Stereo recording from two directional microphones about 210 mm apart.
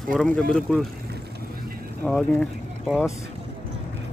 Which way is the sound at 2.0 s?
5° left (ahead or behind).